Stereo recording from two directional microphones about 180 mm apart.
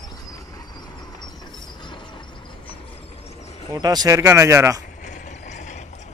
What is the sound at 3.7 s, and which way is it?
Speech, 20° right (ahead or behind).